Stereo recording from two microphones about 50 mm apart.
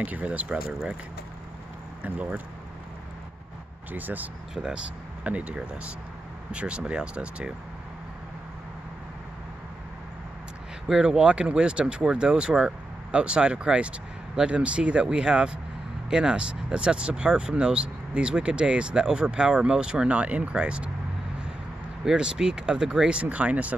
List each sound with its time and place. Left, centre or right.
0.0 s speech: right
2.0 s speech: right
3.9 s speech: right
10.9 s speech: centre
22.0 s speech: centre